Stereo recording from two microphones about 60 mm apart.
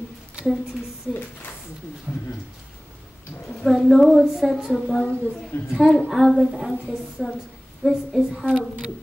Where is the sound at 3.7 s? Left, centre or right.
Centre.